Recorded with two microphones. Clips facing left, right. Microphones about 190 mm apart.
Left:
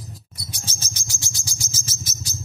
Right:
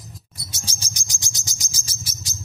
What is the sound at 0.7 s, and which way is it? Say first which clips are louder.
Bird: left 2 dB; 15° right (ahead or behind).